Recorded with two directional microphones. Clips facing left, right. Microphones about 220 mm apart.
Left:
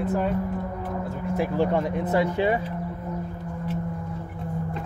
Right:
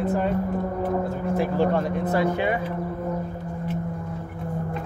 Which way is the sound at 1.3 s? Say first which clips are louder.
Right 1 dB; 20° left (ahead or behind).